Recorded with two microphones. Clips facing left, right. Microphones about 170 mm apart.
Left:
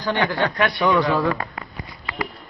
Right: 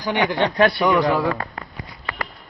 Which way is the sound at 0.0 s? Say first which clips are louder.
Right 1 dB; 15° right (ahead or behind).